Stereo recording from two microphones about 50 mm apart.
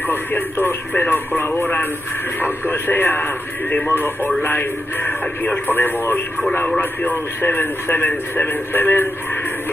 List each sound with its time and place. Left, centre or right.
0.0 s a man's voice: left
7.4 s a man's voice: left